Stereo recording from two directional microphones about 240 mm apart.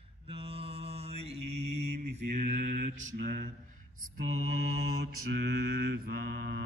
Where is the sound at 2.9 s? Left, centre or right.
Right.